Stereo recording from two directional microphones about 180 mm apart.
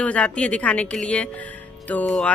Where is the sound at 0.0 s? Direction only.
5° left (ahead or behind).